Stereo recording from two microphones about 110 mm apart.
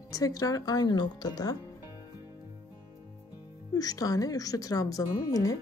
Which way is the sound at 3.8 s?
35° left (ahead or behind).